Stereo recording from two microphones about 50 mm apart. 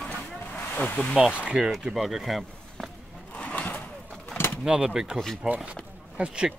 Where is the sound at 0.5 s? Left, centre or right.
Left.